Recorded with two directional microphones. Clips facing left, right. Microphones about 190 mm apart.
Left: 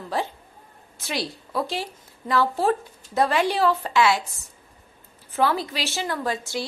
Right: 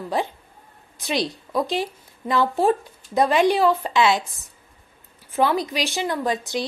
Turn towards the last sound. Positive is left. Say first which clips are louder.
# right 3 dB
turn(degrees=-20)  # may be behind; listen again after turning